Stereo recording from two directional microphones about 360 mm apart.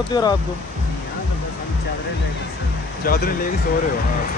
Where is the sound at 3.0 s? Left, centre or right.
Left.